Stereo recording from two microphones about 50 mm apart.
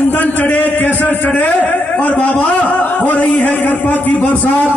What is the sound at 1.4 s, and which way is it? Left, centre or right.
A man's voice, left.